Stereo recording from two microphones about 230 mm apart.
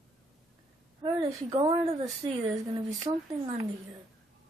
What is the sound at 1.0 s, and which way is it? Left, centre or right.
A woman's voice, right.